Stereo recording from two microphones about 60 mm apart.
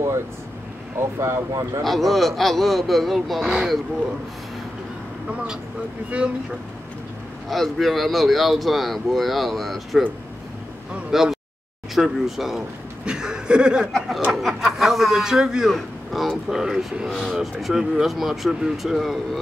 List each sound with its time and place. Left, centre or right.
0.9 s speech: right
1.8 s speech: centre
6.0 s speech: right
7.4 s speech: centre
11.1 s speech: centre
13.0 s speech: centre
13.9 s speech: centre